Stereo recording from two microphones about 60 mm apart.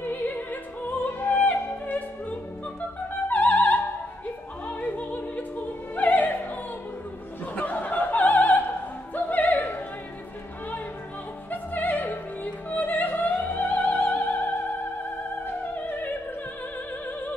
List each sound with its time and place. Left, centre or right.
0.0 s opera: left
3.3 s opera: left
7.5 s opera: left
11.5 s opera: left